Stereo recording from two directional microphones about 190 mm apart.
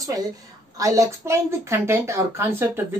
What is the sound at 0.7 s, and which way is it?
Speech, 15° right (ahead or behind).